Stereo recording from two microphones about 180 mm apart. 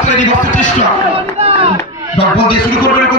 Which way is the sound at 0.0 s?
45° left (ahead or behind).